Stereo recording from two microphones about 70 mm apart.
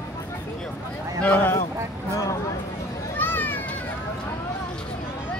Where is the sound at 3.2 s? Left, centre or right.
Left.